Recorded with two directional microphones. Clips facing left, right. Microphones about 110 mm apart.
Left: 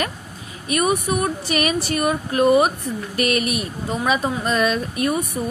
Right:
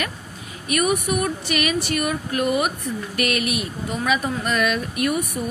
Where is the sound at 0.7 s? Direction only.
30° left (ahead or behind).